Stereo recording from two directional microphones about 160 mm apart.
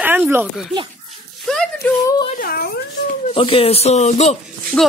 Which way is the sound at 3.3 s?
35° left (ahead or behind).